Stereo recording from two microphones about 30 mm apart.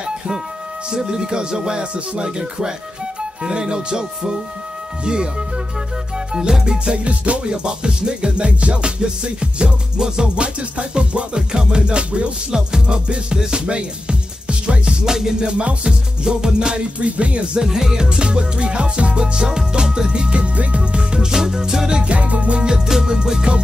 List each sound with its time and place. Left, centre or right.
0.9 s music: right
3.2 s speech: right
5.0 s music: right
7.1 s music: right
7.4 s music: right
14.9 s music: centre
15.4 s music: right
16.7 s music: right
17.6 s music: centre
21.9 s music: right
22.8 s music: centre